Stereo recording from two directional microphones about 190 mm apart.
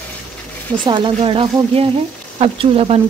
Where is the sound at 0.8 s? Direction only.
25° right (ahead or behind).